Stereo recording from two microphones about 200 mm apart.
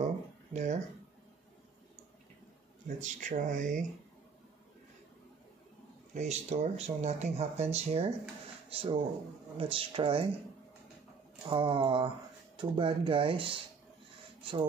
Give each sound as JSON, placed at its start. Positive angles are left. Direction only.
{"t": 0.0, "sound": "a sound", "side_deg": -35}
{"t": 3.0, "sound": "speech", "side_deg": -40}
{"t": 6.1, "sound": "speech", "side_deg": -35}
{"t": 11.4, "sound": "speech", "side_deg": -25}